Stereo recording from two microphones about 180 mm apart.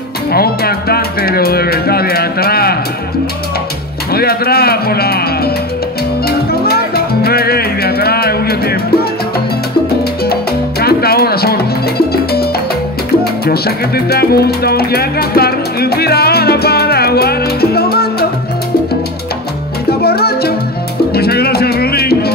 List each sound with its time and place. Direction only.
0.3 s speech: 60° left (ahead or behind)
4.1 s speech: 60° left (ahead or behind)
6.2 s music: 60° left (ahead or behind)
10.2 s salsa music: 60° left (ahead or behind)
12.1 s music: 60° left (ahead or behind)
13.2 s speech: 60° left (ahead or behind)
19.9 s music: 60° left (ahead or behind)